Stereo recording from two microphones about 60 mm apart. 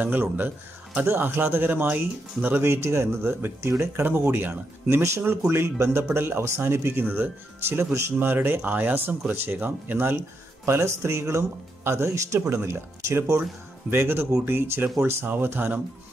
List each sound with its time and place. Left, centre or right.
0.0 s speech: right
2.6 s speech: right
8.2 s speech: right